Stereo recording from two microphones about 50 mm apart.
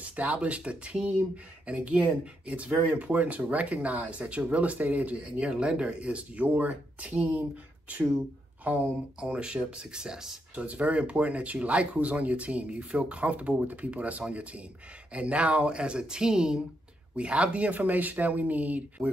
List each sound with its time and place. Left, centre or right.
0.0 s speech: right
5.4 s speech: centre
10.5 s speech: right